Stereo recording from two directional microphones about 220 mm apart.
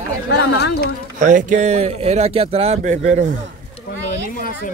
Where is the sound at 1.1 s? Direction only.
35° right (ahead or behind).